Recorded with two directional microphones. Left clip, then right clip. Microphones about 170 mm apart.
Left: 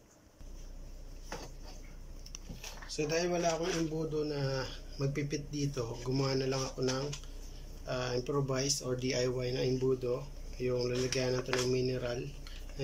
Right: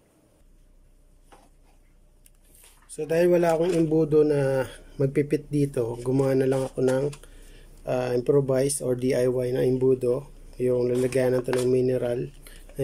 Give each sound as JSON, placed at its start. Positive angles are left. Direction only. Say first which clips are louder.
{"t": 3.0, "sound": "speech", "louder": "right 11 dB", "side_deg": -55}